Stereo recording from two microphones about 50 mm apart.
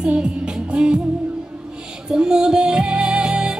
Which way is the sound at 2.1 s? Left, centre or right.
Centre.